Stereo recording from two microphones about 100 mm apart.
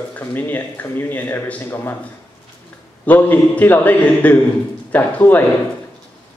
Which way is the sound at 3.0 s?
15° left (ahead or behind).